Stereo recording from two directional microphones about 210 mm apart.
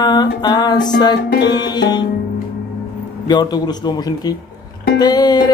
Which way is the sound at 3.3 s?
20° left (ahead or behind).